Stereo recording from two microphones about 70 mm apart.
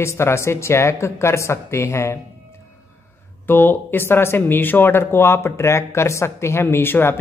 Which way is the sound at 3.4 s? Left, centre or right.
Left.